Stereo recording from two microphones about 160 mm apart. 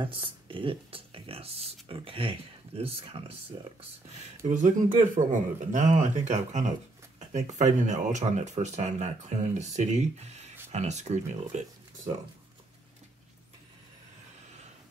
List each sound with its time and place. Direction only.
0.0 s speech: 30° right (ahead or behind)
4.5 s speech: 50° right (ahead or behind)